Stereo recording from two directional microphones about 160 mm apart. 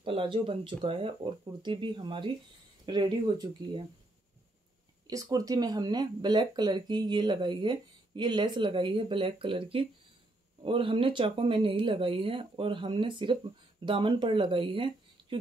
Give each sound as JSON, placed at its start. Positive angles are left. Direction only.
{"t": 0.0, "sound": "speech", "side_deg": -35}
{"t": 5.0, "sound": "speech", "side_deg": -25}